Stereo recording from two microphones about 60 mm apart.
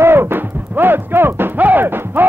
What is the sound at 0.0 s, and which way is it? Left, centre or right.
Music, right.